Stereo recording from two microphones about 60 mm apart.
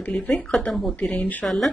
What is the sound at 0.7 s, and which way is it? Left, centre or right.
Speech, centre.